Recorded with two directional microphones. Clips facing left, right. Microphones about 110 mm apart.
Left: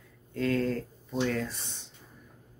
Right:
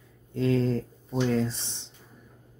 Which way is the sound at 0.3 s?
20° right (ahead or behind).